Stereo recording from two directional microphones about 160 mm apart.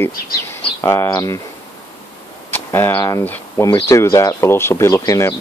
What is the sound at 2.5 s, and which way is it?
Speech, 15° left (ahead or behind).